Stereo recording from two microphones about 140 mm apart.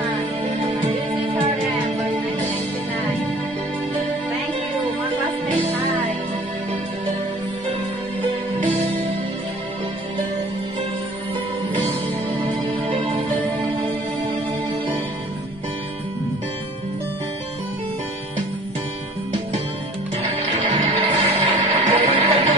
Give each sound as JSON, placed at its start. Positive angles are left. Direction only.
{"t": 0.5, "sound": "music", "side_deg": -55}
{"t": 8.5, "sound": "music", "side_deg": -40}
{"t": 20.7, "sound": "music", "side_deg": -45}